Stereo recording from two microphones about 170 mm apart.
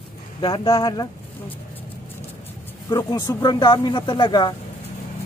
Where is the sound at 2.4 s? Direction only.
15° left (ahead or behind).